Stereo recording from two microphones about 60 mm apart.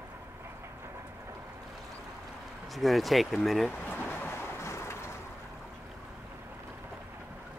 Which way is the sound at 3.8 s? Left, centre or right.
Left.